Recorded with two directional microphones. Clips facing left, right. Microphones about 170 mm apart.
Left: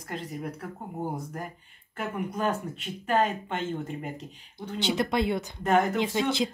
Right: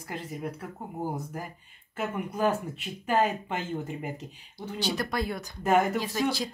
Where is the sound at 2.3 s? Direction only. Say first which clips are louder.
Right 3 dB; 5° right (ahead or behind).